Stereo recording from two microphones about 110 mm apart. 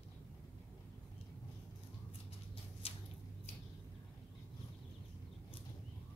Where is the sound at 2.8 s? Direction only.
65° left (ahead or behind).